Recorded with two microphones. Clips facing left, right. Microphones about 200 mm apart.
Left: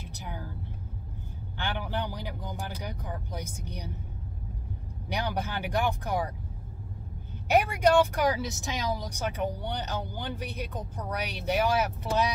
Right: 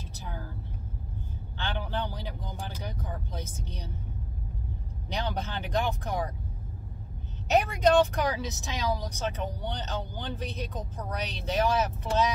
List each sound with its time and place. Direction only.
0.1 s vehicle: 15° left (ahead or behind)
1.6 s vehicle: 15° left (ahead or behind)
2.8 s speech: 15° left (ahead or behind)
5.1 s speech: 10° left (ahead or behind)
7.5 s speech: 10° left (ahead or behind)
8.4 s a woman's voice: 20° right (ahead or behind)
8.6 s speech: 15° left (ahead or behind)